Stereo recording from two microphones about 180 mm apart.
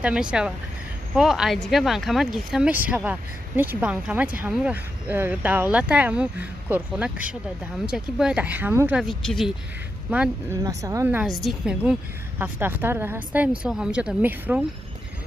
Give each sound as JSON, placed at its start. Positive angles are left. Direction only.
{"t": 0.0, "sound": "speech", "side_deg": -5}
{"t": 10.6, "sound": "speech", "side_deg": -20}
{"t": 11.2, "sound": "speech", "side_deg": 0}